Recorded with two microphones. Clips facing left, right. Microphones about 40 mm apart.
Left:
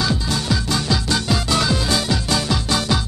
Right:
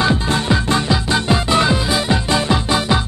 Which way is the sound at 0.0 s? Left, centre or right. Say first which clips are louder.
Right 5 dB; right.